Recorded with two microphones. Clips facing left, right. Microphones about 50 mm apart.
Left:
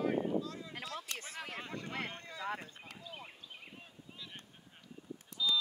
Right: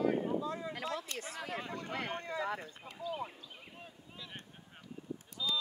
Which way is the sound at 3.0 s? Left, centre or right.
Left.